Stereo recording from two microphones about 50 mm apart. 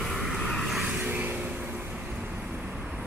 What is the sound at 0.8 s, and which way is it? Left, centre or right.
Vehicle, right.